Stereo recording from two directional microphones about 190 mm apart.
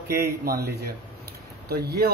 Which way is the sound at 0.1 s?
55° right (ahead or behind).